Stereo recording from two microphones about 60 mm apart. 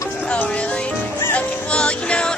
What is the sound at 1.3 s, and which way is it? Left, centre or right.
Music, centre.